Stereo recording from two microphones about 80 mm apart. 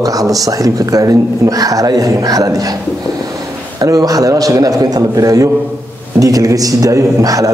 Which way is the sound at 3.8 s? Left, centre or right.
Right.